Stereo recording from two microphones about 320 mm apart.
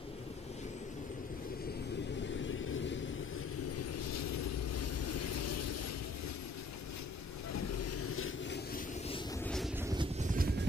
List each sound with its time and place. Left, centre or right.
2.4 s vehicle: left
3.7 s vehicle: left
7.5 s vehicle: left
9.5 s vehicle: centre
9.8 s helicopter: centre